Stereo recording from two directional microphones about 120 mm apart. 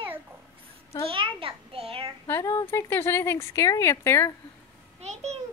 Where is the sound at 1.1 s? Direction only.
45° right (ahead or behind).